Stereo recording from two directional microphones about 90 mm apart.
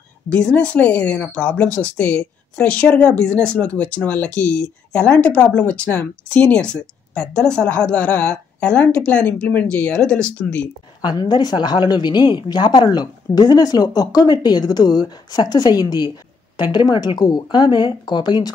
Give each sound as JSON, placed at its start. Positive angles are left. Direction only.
{"t": 0.3, "sound": "speech", "side_deg": 10}
{"t": 11.0, "sound": "a woman's voice", "side_deg": 55}